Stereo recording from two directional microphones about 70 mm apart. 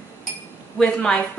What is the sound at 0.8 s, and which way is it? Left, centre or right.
Speech, centre.